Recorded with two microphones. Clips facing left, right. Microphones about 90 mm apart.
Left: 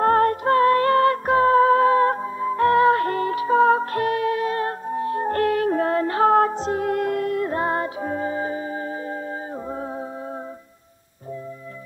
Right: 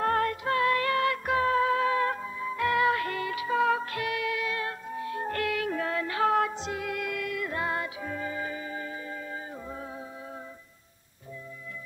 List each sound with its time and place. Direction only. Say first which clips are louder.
0.0 s music: left 9 dB; 40° left (ahead or behind)